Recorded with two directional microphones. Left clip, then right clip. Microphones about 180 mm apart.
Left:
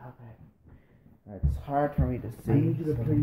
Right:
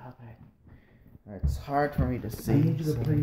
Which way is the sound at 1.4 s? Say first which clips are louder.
Even; 15° right (ahead or behind).